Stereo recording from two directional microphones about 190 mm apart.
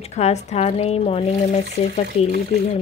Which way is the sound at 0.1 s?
35° left (ahead or behind).